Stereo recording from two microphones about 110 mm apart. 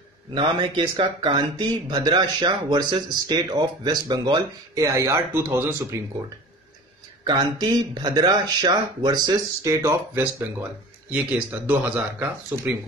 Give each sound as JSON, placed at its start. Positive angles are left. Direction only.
{"t": 0.3, "sound": "speech", "side_deg": -45}
{"t": 7.2, "sound": "speech", "side_deg": -40}
{"t": 11.1, "sound": "speech", "side_deg": -15}